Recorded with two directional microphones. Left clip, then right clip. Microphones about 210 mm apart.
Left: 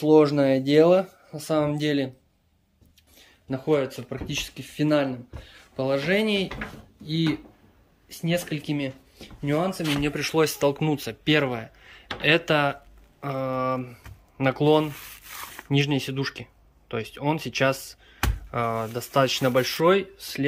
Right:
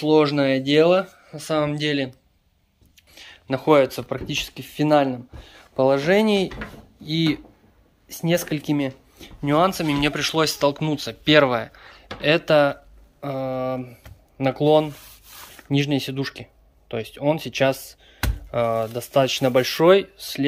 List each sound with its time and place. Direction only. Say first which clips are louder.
0.0 s speech: even; 10° left (ahead or behind)
3.4 s speech: right 7 dB; 15° right (ahead or behind)
7.0 s speech: right 4 dB; 10° right (ahead or behind)
10.1 s speech: right 2 dB; 5° left (ahead or behind)